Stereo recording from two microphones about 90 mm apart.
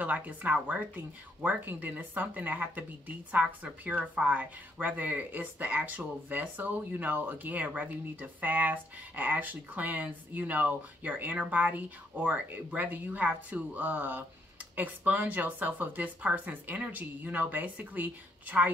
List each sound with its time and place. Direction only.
0.0 s speech: 15° right (ahead or behind)